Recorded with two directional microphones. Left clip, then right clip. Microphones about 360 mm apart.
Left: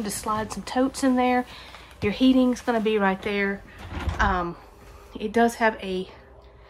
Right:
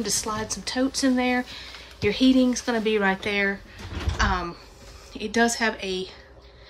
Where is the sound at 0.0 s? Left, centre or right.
Centre.